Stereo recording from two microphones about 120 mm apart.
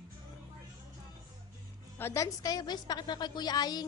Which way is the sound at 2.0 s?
20° left (ahead or behind).